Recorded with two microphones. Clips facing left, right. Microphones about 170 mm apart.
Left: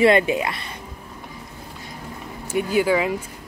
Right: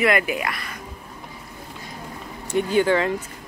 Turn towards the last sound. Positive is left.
turn(degrees=5)  # may be behind; listen again after turning